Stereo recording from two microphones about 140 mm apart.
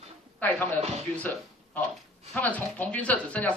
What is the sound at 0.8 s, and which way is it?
Speech, 50° right (ahead or behind).